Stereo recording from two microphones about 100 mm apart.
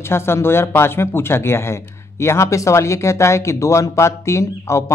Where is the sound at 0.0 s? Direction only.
25° left (ahead or behind).